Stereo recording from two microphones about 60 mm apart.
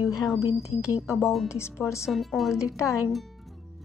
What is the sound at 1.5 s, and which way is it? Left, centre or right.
Speech, left.